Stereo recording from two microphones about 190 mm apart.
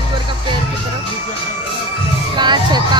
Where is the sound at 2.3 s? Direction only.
25° right (ahead or behind).